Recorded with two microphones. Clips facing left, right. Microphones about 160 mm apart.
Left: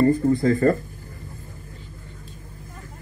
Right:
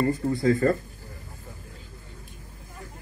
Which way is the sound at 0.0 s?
45° left (ahead or behind).